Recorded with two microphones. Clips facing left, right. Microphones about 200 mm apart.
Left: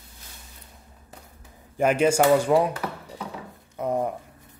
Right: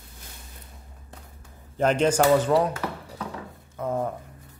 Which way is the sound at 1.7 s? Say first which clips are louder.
Left 1 dB; 10° left (ahead or behind).